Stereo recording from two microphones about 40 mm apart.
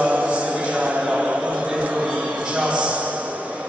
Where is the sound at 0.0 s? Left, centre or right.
Right.